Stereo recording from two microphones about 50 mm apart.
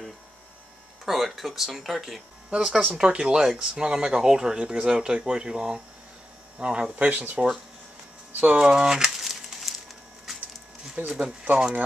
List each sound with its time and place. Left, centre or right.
1.0 s speech: centre
7.0 s speech: right
8.3 s a sound: right
8.5 s pigeon: centre
11.0 s speech: right